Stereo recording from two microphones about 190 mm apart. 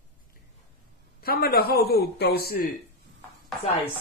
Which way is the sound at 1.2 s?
55° left (ahead or behind).